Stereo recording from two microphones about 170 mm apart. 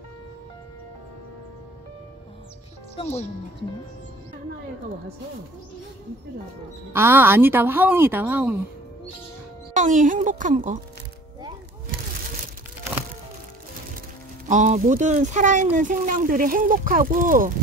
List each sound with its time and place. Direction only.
3.0 s speech: 40° left (ahead or behind)
6.9 s a woman's voice: 15° right (ahead or behind)
9.8 s speech: 50° right (ahead or behind)
14.5 s speech: 45° right (ahead or behind)